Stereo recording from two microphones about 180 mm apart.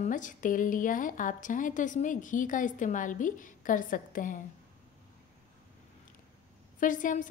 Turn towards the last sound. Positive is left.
turn(degrees=45)  # may be behind; listen again after turning